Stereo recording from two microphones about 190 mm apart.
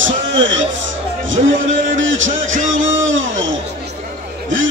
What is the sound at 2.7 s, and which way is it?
A man's voice, 90° right.